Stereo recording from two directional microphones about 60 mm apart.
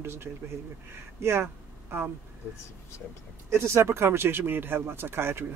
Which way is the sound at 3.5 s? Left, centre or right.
Right.